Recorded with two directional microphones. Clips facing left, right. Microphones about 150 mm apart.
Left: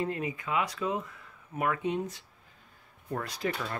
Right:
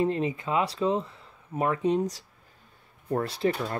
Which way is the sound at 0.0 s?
25° right (ahead or behind).